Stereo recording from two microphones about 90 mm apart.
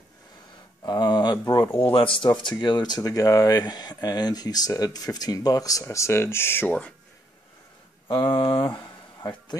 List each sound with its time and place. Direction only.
0.8 s a sound: 55° left (ahead or behind)
1.5 s speech: 50° left (ahead or behind); by 2.2 s 70° left (ahead or behind)
2.2 s speech: 55° left (ahead or behind)
5.9 s speech: 30° left (ahead or behind)
8.1 s speech: 60° left (ahead or behind)